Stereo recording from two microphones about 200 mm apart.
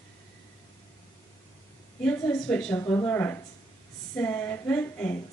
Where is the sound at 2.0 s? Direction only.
10° left (ahead or behind).